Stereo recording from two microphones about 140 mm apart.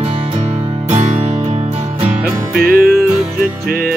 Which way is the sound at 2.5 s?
90° right.